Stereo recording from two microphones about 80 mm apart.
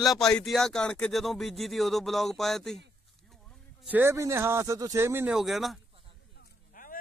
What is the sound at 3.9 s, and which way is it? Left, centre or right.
Speech, right.